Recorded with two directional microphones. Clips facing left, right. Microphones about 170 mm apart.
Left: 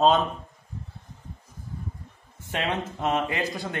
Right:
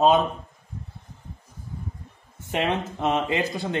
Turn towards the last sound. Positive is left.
turn(degrees=-25)  # may be behind; listen again after turning